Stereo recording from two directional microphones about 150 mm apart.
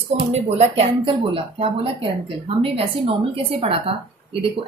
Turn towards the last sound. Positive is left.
turn(degrees=-35)  # may be behind; listen again after turning